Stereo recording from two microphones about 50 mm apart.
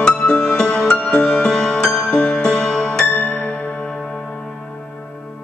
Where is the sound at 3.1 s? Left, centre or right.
Left.